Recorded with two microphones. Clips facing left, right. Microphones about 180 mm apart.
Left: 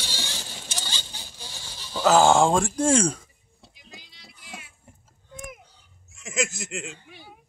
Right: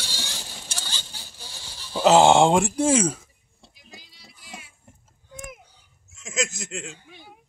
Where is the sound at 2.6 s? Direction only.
5° right (ahead or behind).